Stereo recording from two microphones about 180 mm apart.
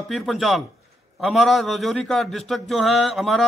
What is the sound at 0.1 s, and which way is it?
Speech, centre (ahead or behind).